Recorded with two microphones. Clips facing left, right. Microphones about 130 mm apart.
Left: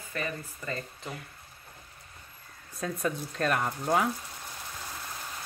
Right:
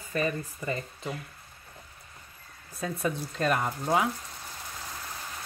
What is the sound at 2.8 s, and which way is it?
Speech, centre (ahead or behind).